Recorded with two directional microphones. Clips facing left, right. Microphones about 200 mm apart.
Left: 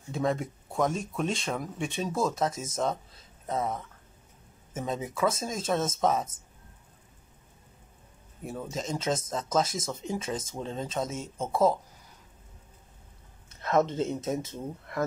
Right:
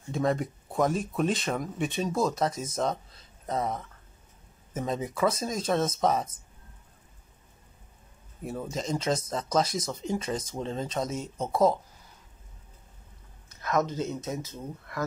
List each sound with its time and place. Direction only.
0.1 s speech: centre (ahead or behind)
8.5 s speech: centre (ahead or behind)
13.6 s speech: 25° left (ahead or behind)